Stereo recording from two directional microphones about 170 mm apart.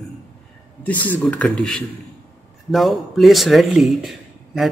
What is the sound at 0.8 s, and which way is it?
A man's voice, 10° left (ahead or behind).